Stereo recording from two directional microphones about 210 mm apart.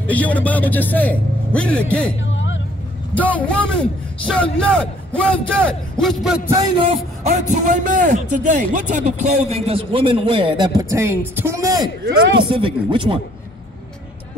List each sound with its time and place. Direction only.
0.0 s a man's voice: 5° left (ahead or behind)
2.1 s a sound: 65° left (ahead or behind)
3.2 s a man's voice: 5° left (ahead or behind)
6.5 s a man's voice: 25° right (ahead or behind)
7.2 s a man's voice: 35° right (ahead or behind)